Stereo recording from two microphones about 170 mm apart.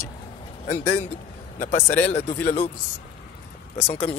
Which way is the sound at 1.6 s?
45° left (ahead or behind).